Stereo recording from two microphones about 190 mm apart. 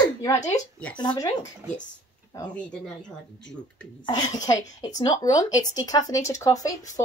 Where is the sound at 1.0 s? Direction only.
25° left (ahead or behind).